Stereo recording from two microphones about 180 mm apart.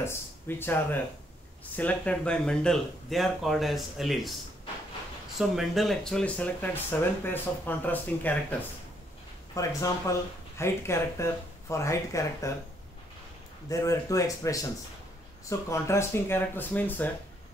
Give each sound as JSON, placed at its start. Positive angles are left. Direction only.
{"t": 0.0, "sound": "speech", "side_deg": 15}
{"t": 5.4, "sound": "speech", "side_deg": 0}
{"t": 13.7, "sound": "speech", "side_deg": 20}
{"t": 15.7, "sound": "speech", "side_deg": 15}